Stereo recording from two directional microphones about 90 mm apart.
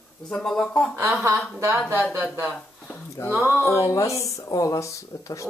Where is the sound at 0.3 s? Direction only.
5° left (ahead or behind).